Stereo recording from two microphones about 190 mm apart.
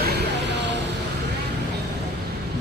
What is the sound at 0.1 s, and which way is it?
Vehicle, 65° right (ahead or behind).